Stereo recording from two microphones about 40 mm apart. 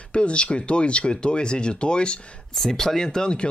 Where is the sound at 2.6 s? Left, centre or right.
Centre.